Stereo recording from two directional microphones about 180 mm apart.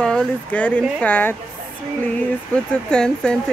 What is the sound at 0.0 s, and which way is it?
Speech, 5° left (ahead or behind).